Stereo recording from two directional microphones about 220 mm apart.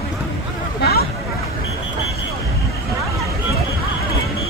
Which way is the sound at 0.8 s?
45° left (ahead or behind).